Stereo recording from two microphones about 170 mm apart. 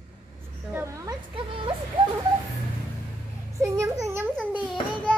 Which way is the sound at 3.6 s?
20° right (ahead or behind).